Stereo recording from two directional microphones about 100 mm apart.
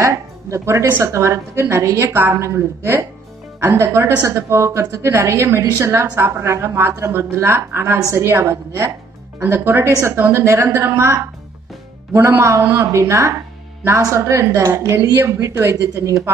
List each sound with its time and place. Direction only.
0.0 s a woman's voice: 30° right (ahead or behind)